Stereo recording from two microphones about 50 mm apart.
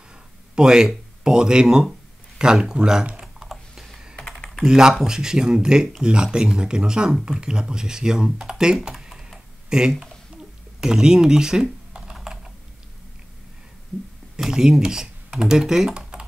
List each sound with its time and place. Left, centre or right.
0.6 s speech: centre
3.3 s typing: centre
4.3 s typing: centre
4.6 s speech: centre
9.0 s typing: centre
10.8 s computer keyboard: centre
14.4 s speech: centre